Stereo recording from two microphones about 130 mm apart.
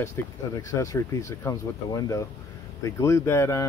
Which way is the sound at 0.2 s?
20° left (ahead or behind).